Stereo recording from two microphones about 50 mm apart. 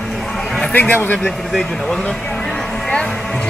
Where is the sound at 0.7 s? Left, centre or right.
Left.